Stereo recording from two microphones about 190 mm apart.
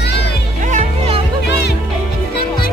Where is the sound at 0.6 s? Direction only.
40° right (ahead or behind).